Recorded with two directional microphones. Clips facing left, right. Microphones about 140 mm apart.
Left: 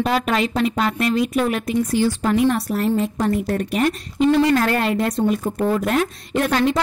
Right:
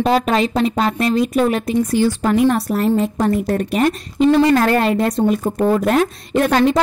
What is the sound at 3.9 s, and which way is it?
A woman's voice, 35° right (ahead or behind).